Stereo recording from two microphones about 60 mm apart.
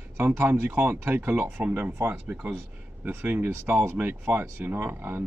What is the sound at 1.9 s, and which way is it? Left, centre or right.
Speech, right.